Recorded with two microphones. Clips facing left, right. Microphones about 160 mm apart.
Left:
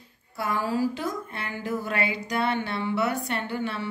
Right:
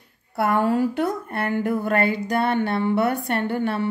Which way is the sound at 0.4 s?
60° right (ahead or behind).